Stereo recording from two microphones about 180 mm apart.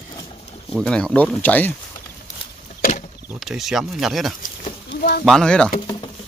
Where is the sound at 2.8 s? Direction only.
40° left (ahead or behind).